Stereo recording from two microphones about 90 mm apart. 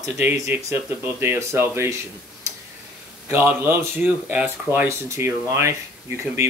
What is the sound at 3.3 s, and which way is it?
Speech, 25° right (ahead or behind).